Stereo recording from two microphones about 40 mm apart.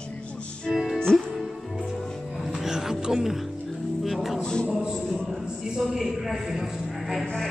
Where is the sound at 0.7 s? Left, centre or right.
Centre.